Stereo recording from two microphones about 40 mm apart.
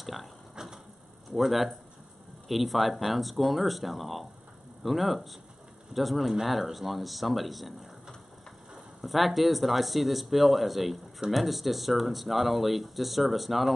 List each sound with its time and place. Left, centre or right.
0.0 s speech: centre
0.6 s a sound: centre
1.3 s speech: centre
9.0 s speech: centre